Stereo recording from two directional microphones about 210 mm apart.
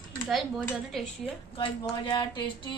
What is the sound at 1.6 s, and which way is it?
Speech, 20° left (ahead or behind).